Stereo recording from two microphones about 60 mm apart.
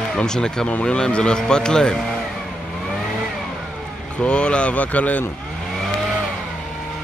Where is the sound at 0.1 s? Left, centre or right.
Centre.